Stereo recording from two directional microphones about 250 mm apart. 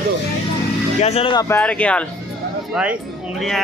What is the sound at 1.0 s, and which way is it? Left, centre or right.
Speech, left.